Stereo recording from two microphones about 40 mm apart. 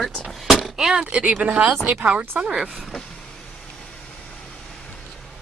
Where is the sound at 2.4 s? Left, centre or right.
Centre.